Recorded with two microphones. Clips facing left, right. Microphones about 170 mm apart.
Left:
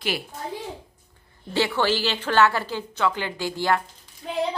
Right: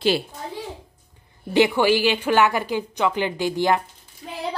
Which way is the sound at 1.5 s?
15° right (ahead or behind).